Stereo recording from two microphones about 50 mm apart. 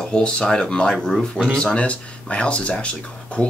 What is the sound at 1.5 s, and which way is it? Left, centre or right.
Speech, centre.